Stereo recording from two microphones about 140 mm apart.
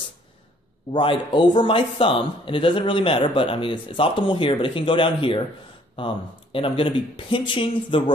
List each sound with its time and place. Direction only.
0.9 s speech: 35° left (ahead or behind)